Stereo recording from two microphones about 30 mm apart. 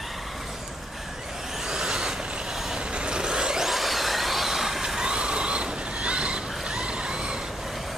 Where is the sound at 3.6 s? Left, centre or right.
Centre.